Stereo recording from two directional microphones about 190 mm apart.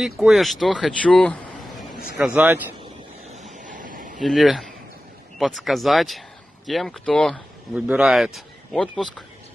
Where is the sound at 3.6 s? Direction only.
45° right (ahead or behind).